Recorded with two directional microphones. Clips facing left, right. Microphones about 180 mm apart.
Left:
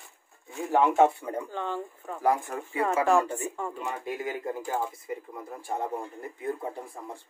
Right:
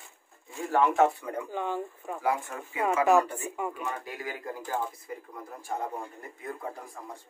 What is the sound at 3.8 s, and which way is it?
Speech, 20° left (ahead or behind).